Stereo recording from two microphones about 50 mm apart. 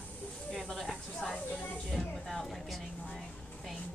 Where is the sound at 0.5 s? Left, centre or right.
Centre.